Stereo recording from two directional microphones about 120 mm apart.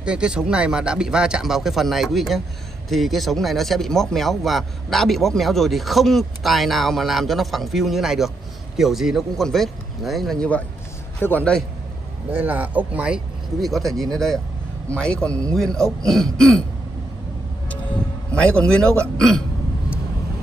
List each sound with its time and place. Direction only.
0.0 s a man's voice: 10° right (ahead or behind); by 11.5 s 15° left (ahead or behind)
12.3 s speech: 15° right (ahead or behind); by 16.5 s 5° left (ahead or behind)
18.4 s a man's voice: 10° left (ahead or behind)